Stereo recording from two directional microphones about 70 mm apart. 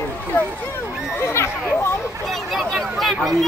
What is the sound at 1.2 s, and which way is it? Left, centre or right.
Speech, left.